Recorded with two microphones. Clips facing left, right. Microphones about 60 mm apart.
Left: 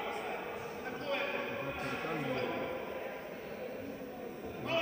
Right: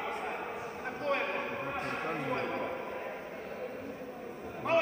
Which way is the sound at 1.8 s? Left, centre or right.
Right.